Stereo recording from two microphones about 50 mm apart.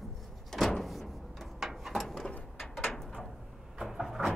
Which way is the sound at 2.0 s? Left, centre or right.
Centre.